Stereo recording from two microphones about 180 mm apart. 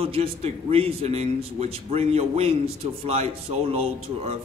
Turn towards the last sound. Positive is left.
turn(degrees=-35)  # may be behind; listen again after turning